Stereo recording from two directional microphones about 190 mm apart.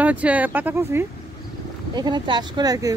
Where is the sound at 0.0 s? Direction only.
5° right (ahead or behind).